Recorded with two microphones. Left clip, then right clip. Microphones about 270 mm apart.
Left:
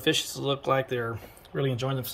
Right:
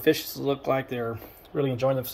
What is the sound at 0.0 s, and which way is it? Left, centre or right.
Speech, centre.